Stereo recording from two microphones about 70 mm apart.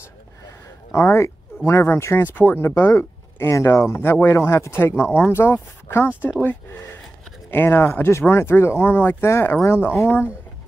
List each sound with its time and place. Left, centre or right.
0.9 s speech: left